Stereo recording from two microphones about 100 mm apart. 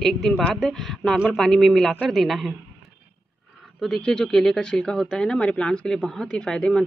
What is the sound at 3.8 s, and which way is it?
Speech, 5° left (ahead or behind).